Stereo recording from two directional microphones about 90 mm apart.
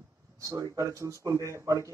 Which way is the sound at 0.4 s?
40° right (ahead or behind).